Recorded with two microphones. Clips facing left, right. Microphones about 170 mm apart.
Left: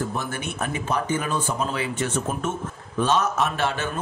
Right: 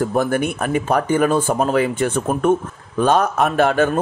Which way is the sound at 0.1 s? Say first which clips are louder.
Right 11 dB; 50° right (ahead or behind).